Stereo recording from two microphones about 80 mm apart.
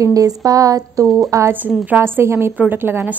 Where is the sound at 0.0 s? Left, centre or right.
Right.